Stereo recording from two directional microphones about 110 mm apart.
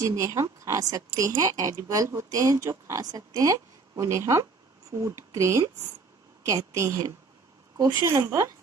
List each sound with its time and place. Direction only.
0.0 s a woman's voice: 30° right (ahead or behind)